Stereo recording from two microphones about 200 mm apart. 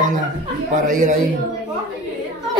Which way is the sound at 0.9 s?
40° right (ahead or behind).